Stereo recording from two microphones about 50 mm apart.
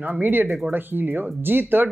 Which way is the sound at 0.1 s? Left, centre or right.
Right.